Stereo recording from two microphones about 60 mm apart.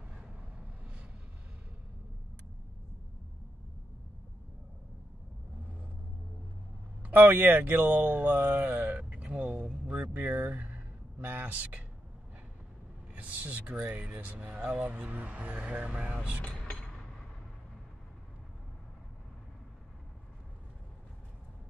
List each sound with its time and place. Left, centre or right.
0.1 s vehicle: centre
7.0 s a sound: right
10.1 s speech: right
13.1 s speech: right
16.3 s mechanisms: left